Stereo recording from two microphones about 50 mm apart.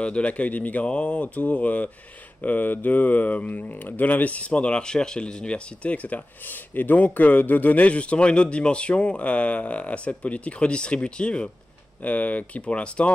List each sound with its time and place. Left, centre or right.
0.0 s speech: left